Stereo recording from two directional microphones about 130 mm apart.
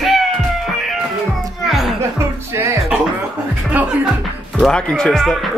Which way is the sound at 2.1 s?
20° right (ahead or behind).